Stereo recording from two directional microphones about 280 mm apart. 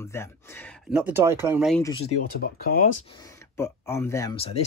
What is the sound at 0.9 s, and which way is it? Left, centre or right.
Speech, centre.